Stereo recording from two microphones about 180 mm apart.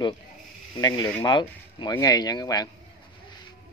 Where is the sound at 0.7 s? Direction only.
20° left (ahead or behind).